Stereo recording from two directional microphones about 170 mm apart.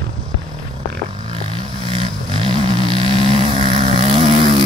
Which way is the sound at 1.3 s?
30° right (ahead or behind).